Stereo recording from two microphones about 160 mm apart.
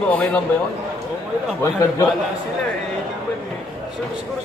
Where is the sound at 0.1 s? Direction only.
10° left (ahead or behind).